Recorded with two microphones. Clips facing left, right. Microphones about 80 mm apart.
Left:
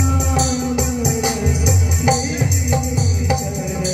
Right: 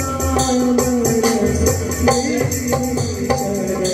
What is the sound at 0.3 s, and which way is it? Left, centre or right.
Music, right.